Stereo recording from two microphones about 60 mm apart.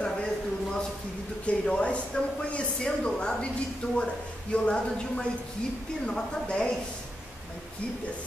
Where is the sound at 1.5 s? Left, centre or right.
Centre.